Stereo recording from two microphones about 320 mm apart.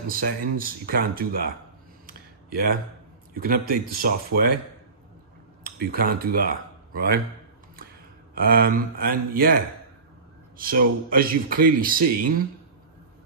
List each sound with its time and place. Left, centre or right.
0.1 s speech: right
2.0 s a sound: right
3.3 s speech: right
5.9 s speech: right
8.4 s speech: right
10.6 s speech: right